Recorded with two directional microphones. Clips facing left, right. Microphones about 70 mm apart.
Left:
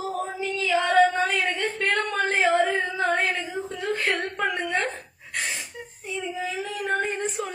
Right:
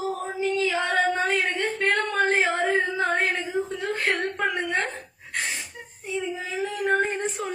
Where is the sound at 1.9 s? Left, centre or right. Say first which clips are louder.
Right 2 dB; right.